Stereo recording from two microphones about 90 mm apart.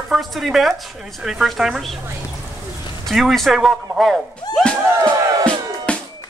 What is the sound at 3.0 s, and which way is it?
Speech, centre (ahead or behind).